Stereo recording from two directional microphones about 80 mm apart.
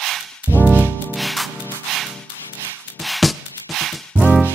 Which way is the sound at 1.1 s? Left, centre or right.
Centre.